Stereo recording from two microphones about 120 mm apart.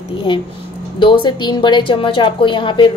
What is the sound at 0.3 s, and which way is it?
A woman's voice, 45° left (ahead or behind).